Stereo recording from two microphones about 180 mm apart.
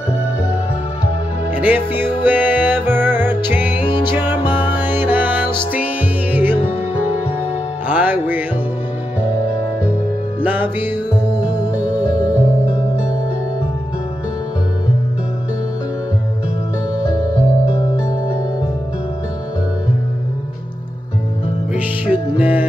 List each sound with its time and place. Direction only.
1.5 s music: 10° right (ahead or behind)
3.8 s music: 25° left (ahead or behind)
4.7 s music: 10° right (ahead or behind)
10.4 s music: 10° right (ahead or behind)
21.7 s music: 10° right (ahead or behind)